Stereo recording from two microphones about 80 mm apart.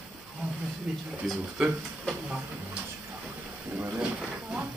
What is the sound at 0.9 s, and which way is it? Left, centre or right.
Speech, centre.